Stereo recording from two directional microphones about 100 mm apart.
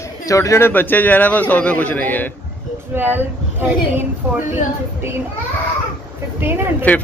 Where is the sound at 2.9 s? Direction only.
20° right (ahead or behind).